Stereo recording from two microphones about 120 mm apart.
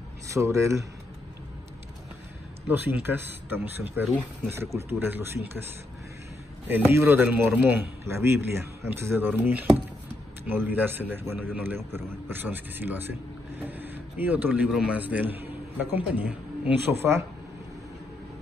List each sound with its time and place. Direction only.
0.3 s a man's voice: 25° right (ahead or behind)
2.9 s a man's voice: 15° right (ahead or behind)
6.7 s a man's voice: 20° right (ahead or behind)